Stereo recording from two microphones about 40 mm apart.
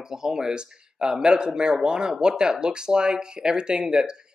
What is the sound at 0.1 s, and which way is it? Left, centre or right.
Speech, centre.